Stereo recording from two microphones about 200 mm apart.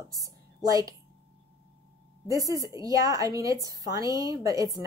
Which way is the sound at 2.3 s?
15° right (ahead or behind).